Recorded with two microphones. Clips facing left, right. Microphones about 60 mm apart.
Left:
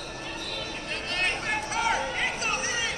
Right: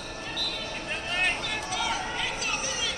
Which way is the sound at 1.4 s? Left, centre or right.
Left.